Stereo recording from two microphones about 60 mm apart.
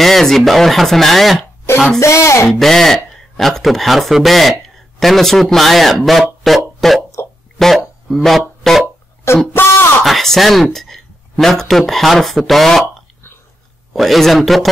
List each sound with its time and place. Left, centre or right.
0.0 s a man's voice: centre
2.0 s speech: left
2.4 s a man's voice: centre
7.2 s a sound: left
7.5 s a sound: centre
9.3 s speech: left
10.0 s speech: centre
13.9 s a man's voice: centre